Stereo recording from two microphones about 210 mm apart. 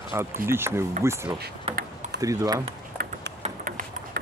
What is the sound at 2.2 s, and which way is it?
Speech, 15° right (ahead or behind).